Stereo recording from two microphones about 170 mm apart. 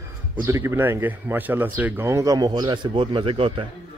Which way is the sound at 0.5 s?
15° right (ahead or behind).